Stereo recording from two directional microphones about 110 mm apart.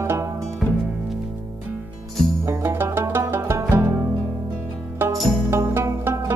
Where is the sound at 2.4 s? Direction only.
25° right (ahead or behind).